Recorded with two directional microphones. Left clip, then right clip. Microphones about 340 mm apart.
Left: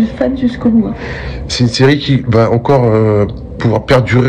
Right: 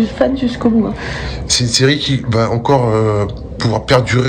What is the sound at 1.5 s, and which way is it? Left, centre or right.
A man's voice, centre.